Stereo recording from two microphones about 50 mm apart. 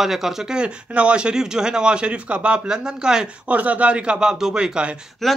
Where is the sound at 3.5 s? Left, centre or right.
Right.